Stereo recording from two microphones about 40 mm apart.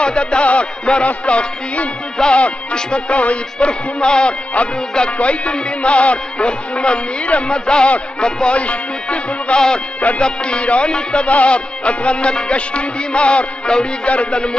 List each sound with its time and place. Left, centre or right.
0.0 s music: left
2.2 s music: centre
2.7 s music: left
10.2 s music: left